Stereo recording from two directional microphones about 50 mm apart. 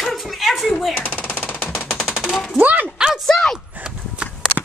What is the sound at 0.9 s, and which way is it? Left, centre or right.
Machine gun, left.